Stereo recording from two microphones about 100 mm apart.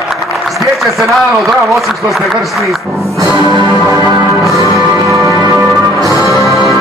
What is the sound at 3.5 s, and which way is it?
Music, 40° right (ahead or behind).